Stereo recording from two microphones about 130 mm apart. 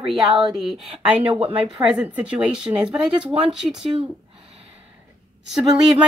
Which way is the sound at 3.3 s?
50° right (ahead or behind).